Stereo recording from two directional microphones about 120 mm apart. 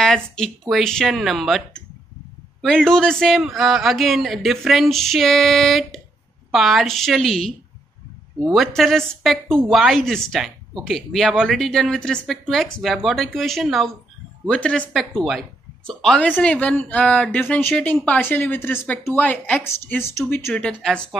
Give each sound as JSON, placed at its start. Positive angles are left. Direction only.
{"t": 0.0, "sound": "speech", "side_deg": 5}
{"t": 14.5, "sound": "a woman's voice", "side_deg": 10}
{"t": 20.6, "sound": "speech", "side_deg": 5}